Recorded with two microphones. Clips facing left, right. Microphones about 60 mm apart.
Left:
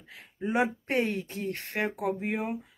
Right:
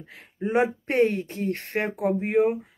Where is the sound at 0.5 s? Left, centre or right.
Right.